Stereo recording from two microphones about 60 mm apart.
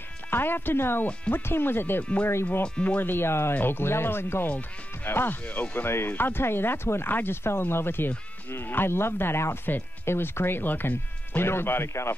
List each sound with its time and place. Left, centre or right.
0.3 s speech: left
2.6 s speech: centre
3.0 s speech: left
5.4 s speech: left
5.9 s speech: left